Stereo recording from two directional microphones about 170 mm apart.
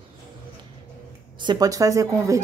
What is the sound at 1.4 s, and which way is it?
Speech, 25° right (ahead or behind).